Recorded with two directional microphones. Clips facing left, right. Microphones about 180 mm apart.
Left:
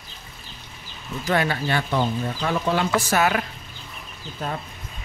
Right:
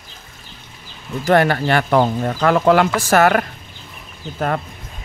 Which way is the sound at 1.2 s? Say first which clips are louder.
Right 8 dB; 60° right (ahead or behind).